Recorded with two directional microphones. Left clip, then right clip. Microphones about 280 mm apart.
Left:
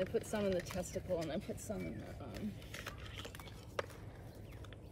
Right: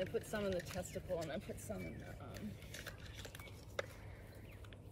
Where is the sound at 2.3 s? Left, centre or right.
Left.